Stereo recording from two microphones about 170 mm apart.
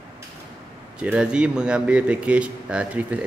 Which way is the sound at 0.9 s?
5° right (ahead or behind).